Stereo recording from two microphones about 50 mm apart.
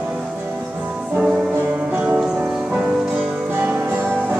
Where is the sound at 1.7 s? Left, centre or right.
Right.